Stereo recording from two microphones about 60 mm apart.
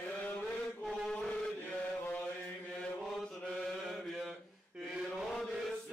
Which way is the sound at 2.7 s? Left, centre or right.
Centre.